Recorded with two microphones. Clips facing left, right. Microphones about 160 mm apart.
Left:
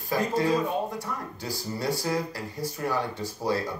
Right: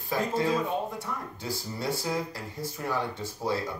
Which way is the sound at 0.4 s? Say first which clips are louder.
Left 3 dB; centre (ahead or behind).